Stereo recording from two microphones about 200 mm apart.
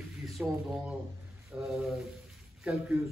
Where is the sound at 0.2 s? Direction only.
Centre (ahead or behind).